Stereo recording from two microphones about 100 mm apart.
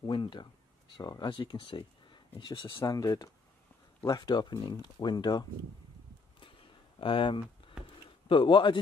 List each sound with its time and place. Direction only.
0.0 s speech: 55° left (ahead or behind)
2.7 s speech: 40° left (ahead or behind)
6.4 s a sound: 60° left (ahead or behind)
8.3 s a man's voice: 60° left (ahead or behind)